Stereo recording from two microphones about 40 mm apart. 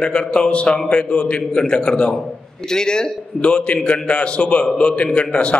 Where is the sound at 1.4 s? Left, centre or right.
Centre.